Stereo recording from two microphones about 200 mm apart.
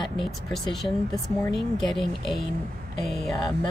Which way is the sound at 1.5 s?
Centre (ahead or behind).